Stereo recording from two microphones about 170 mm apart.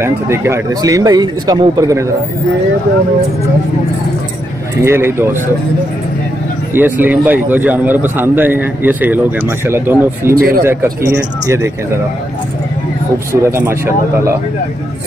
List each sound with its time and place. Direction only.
0.0 s speech: 15° right (ahead or behind)
4.8 s a man's voice: 15° right (ahead or behind)
6.7 s a man's voice: 10° right (ahead or behind)
10.3 s speech: 60° right (ahead or behind)
10.6 s a man's voice: 15° right (ahead or behind)
13.3 s a man's voice: 15° right (ahead or behind)